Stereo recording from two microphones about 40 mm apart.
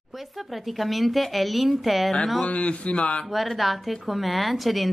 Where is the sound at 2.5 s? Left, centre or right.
Left.